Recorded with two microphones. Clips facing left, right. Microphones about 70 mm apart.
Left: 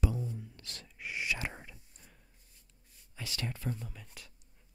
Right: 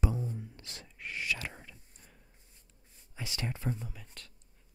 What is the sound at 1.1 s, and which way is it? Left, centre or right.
Speech, centre.